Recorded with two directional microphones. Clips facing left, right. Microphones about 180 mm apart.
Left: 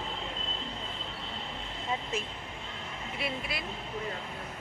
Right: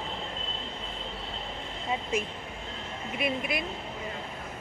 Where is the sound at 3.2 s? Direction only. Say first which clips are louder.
Right 6 dB; 20° right (ahead or behind).